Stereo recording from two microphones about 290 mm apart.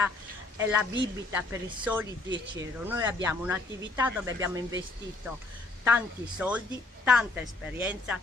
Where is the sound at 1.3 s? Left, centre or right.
Centre.